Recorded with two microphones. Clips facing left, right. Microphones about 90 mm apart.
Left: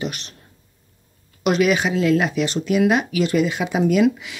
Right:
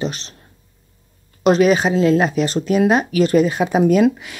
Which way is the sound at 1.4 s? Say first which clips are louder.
Right 4 dB; 35° right (ahead or behind).